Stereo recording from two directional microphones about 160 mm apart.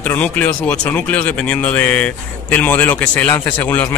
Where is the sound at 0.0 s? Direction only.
10° left (ahead or behind).